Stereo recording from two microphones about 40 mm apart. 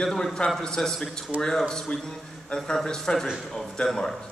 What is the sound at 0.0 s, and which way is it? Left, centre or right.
A man's voice, centre.